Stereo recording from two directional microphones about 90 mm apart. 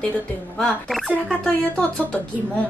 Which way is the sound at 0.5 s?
10° left (ahead or behind).